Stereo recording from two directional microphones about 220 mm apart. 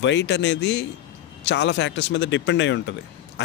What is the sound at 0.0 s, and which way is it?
Speech, 55° left (ahead or behind).